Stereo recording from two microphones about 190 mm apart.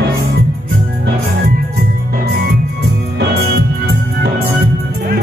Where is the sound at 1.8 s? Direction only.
60° right (ahead or behind).